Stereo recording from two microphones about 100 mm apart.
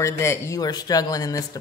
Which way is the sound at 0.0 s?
30° left (ahead or behind).